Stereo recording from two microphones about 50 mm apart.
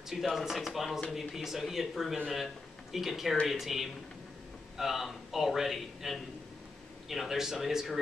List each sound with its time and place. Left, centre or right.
0.1 s a man's voice: centre